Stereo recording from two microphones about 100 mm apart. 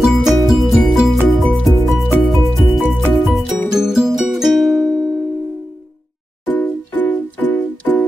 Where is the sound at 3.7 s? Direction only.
5° right (ahead or behind).